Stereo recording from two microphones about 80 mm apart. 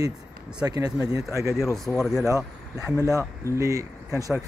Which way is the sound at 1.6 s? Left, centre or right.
Left.